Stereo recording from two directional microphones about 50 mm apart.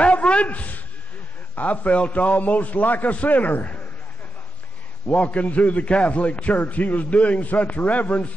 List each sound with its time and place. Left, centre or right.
0.0 s a sound: left
1.5 s a man's voice: left
5.0 s a man's voice: left